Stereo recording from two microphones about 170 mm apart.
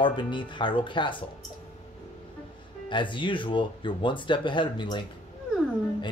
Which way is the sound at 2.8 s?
30° left (ahead or behind).